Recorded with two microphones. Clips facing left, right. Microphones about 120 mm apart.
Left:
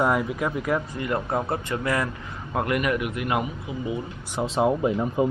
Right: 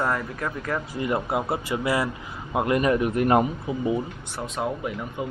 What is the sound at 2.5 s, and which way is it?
Speech, 25° right (ahead or behind).